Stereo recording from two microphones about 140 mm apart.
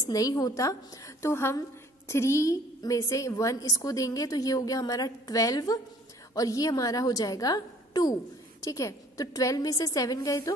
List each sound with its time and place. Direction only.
0.1 s a woman's voice: 25° left (ahead or behind)